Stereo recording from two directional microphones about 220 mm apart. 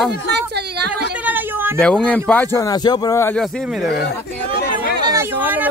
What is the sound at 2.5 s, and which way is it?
Speech, 15° left (ahead or behind).